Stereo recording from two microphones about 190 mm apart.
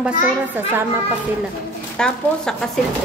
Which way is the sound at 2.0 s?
5° left (ahead or behind).